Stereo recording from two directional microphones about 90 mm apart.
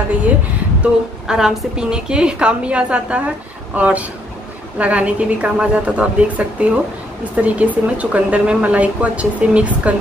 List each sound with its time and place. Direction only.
1.2 s a woman's voice: 5° right (ahead or behind)